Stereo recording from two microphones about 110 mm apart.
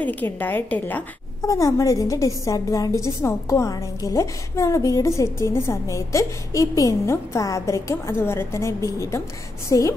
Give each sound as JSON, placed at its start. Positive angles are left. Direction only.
{"t": 0.0, "sound": "a woman's voice", "side_deg": 15}
{"t": 1.4, "sound": "a woman's voice", "side_deg": 30}